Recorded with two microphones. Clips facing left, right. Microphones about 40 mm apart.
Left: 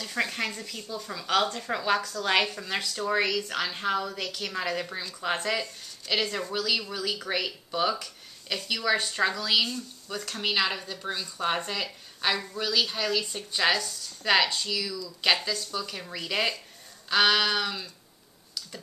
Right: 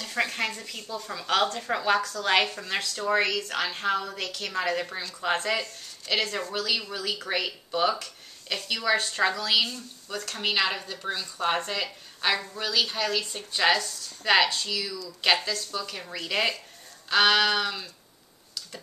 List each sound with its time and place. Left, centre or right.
0.0 s speech: centre